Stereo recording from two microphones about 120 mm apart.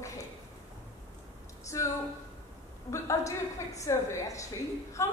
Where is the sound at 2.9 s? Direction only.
25° left (ahead or behind).